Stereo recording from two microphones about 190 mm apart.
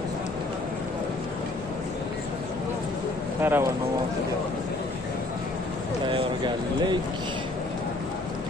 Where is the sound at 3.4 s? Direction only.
10° right (ahead or behind).